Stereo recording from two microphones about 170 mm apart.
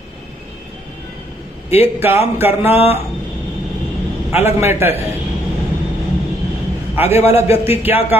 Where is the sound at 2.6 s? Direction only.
35° left (ahead or behind).